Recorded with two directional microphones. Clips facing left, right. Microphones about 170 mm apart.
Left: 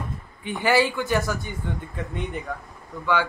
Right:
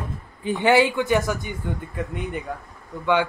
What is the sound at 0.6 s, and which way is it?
Speech, 20° right (ahead or behind).